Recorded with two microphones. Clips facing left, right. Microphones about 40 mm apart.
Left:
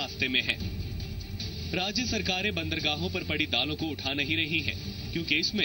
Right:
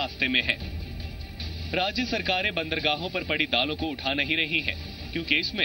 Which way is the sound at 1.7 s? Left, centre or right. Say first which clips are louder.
Right 4 dB; centre.